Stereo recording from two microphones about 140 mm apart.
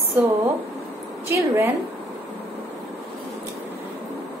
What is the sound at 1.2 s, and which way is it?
Speech, 20° right (ahead or behind).